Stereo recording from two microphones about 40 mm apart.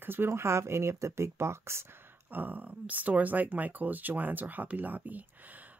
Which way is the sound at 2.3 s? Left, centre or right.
Right.